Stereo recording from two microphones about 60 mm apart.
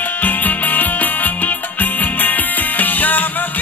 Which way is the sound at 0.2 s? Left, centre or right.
Left.